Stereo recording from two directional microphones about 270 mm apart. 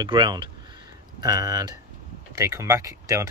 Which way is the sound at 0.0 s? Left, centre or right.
Centre.